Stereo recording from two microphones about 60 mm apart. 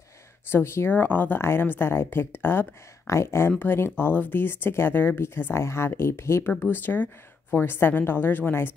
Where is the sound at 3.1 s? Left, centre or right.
Left.